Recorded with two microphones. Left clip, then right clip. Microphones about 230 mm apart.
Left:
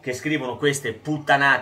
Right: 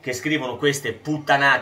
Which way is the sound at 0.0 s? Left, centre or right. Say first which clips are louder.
Right 1 dB; centre.